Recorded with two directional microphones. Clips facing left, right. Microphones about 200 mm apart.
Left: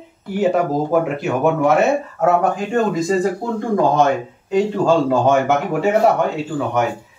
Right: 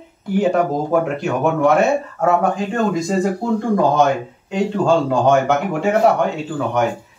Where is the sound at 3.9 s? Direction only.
Centre (ahead or behind).